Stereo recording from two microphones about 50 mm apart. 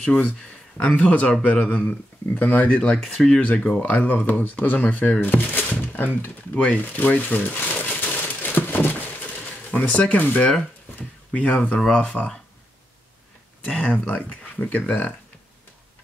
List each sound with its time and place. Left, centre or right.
0.0 s speech: left
2.8 s speech: centre
3.3 s speech: left
6.8 s crumpling: left
9.7 s speech: left
13.7 s speech: left